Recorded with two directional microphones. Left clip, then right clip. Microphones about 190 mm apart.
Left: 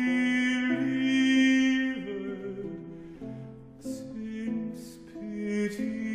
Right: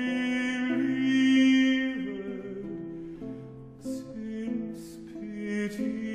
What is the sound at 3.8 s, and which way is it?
Music, 30° left (ahead or behind).